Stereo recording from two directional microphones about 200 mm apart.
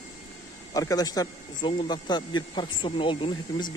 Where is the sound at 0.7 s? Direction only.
20° left (ahead or behind).